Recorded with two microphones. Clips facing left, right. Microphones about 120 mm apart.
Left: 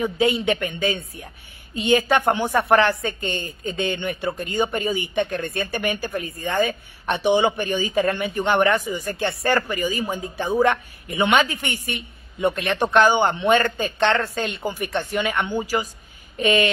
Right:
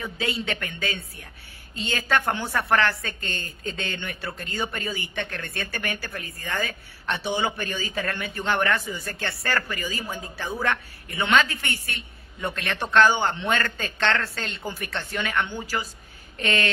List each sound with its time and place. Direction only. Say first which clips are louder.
0.0 s speech: left 9 dB; 15° left (ahead or behind)